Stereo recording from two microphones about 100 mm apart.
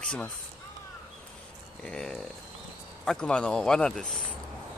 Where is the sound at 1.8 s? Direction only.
5° left (ahead or behind).